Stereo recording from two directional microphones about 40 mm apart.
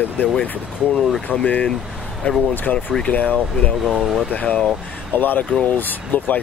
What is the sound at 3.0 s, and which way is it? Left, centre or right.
Speech, left.